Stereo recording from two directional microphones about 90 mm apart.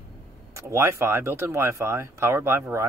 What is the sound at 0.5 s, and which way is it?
Speech, 30° right (ahead or behind).